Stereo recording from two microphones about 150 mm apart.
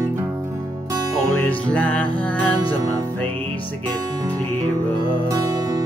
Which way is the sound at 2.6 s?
25° right (ahead or behind).